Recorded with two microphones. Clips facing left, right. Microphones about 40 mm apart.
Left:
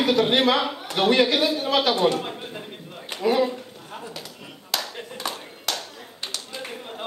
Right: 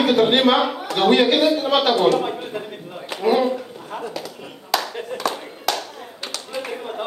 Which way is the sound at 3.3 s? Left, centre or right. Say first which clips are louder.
Right 4 dB; right.